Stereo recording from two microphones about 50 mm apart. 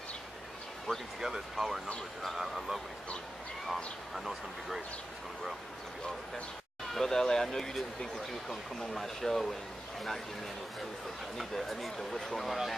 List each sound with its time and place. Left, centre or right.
0.9 s speech: centre
1.2 s speech: centre
6.9 s speech: centre
11.3 s speech: centre